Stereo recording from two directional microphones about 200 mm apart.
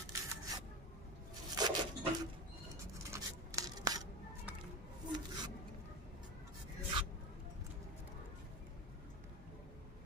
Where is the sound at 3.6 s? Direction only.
20° right (ahead or behind).